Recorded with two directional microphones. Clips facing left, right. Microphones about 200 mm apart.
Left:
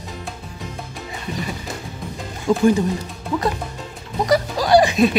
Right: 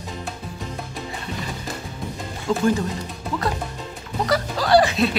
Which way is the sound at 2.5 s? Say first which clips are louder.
Left 4 dB; 15° left (ahead or behind).